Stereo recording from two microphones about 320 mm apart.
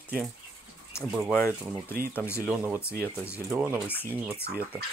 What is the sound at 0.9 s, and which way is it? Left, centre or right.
Speech, centre.